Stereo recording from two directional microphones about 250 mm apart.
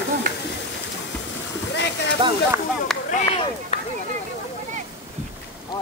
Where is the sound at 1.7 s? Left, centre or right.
Left.